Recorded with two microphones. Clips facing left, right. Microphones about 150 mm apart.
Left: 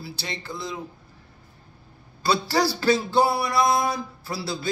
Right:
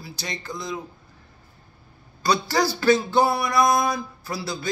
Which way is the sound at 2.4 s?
30° left (ahead or behind).